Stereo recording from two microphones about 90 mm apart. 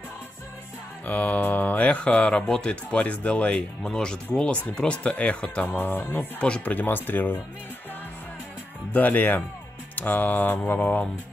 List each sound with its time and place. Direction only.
1.0 s speech: 15° left (ahead or behind)
5.8 s speech: 20° left (ahead or behind)
8.9 s speech: 20° left (ahead or behind)